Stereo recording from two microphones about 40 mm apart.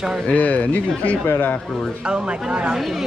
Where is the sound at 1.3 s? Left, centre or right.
Left.